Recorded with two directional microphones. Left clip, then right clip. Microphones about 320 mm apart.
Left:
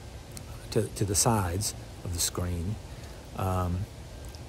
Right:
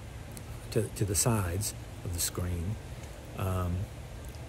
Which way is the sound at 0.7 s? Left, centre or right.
Centre.